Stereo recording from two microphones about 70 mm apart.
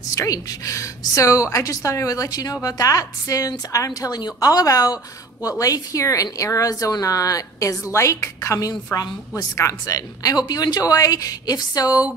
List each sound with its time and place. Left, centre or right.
0.1 s a woman's voice: left